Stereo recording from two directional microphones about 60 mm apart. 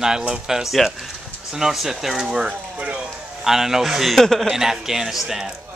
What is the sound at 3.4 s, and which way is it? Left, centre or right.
A man's voice, centre.